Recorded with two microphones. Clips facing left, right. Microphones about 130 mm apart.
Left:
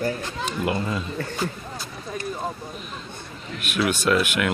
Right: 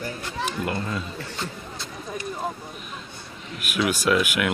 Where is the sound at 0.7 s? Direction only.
10° left (ahead or behind).